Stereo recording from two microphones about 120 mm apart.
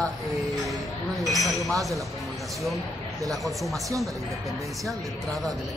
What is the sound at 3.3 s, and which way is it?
Speech, centre (ahead or behind).